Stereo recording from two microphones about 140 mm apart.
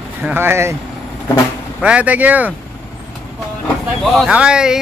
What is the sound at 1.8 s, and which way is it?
Speech, 10° right (ahead or behind).